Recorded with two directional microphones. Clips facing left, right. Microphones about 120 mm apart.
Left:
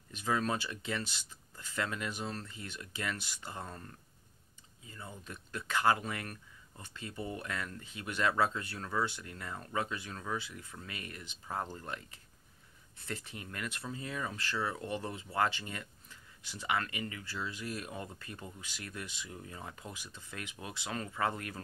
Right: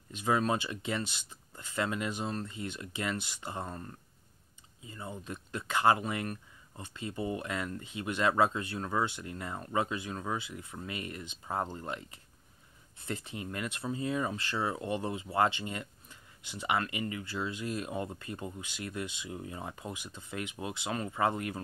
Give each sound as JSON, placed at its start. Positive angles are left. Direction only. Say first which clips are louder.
{"t": 0.1, "sound": "speech", "louder": "right 4 dB", "side_deg": -20}